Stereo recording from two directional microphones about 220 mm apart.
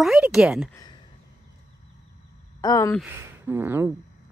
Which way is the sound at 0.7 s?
15° left (ahead or behind).